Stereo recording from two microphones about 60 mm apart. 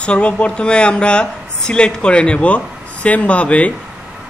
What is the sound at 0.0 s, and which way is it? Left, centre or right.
Speech, centre.